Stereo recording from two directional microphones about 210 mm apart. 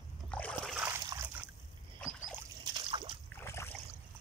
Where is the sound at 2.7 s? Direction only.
20° right (ahead or behind).